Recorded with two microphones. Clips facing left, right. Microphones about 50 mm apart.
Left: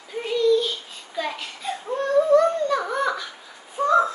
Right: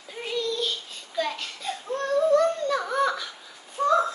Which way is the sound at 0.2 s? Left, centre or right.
Centre.